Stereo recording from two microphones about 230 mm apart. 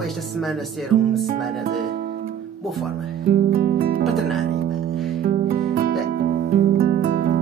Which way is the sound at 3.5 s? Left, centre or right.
Right.